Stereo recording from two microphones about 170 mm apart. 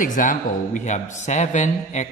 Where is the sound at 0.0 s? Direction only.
50° left (ahead or behind).